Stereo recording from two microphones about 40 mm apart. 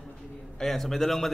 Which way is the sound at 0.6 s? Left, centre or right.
Centre.